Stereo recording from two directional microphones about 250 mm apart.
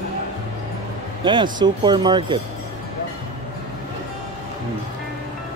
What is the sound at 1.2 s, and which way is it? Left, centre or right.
Speech, centre.